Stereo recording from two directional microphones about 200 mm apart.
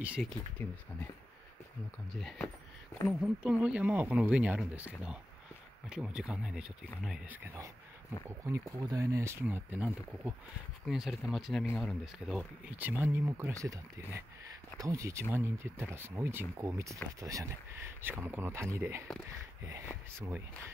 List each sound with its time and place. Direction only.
0.0 s speech: 5° right (ahead or behind)
0.6 s speech: 10° left (ahead or behind)
2.1 s speech: centre (ahead or behind)
20.2 s speech: 10° right (ahead or behind)